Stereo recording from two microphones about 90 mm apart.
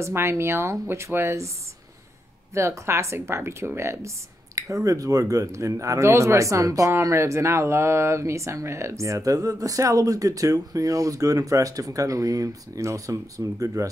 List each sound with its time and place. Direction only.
0.0 s speech: 25° right (ahead or behind)
2.5 s speech: 30° right (ahead or behind)